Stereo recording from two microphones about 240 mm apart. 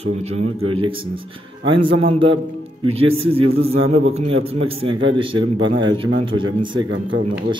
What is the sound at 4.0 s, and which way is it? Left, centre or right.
Speech, right.